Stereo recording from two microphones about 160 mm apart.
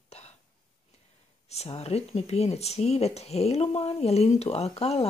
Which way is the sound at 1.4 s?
40° left (ahead or behind).